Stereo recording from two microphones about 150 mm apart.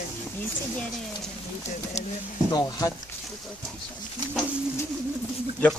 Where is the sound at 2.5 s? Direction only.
20° left (ahead or behind).